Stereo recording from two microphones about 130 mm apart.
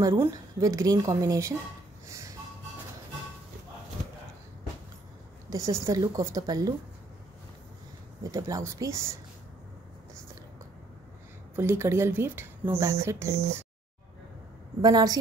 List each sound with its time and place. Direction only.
0.0 s a woman's voice: 20° right (ahead or behind)
2.0 s a sound: 25° right (ahead or behind)
5.5 s a woman's voice: 25° right (ahead or behind)
8.2 s a woman's voice: 25° right (ahead or behind)
11.5 s a woman's voice: 20° right (ahead or behind)
14.8 s a woman's voice: 30° right (ahead or behind)